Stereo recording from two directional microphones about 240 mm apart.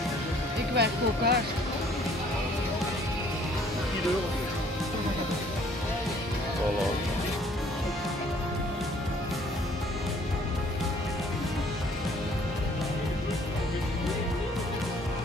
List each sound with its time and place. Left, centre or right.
0.7 s speech: right